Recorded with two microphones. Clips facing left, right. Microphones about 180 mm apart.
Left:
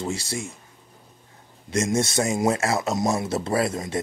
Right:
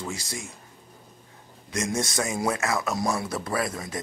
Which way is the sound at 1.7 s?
25° left (ahead or behind).